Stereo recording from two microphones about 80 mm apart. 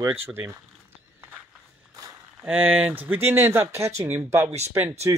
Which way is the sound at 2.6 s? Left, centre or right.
Right.